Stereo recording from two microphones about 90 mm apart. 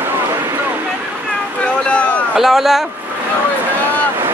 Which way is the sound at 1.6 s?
10° left (ahead or behind).